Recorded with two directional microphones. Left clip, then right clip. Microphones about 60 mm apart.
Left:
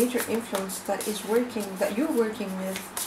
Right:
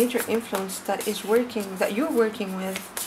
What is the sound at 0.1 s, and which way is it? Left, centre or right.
Speech, centre.